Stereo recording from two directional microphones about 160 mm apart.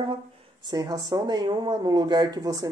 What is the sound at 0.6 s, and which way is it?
A woman's voice, 25° right (ahead or behind).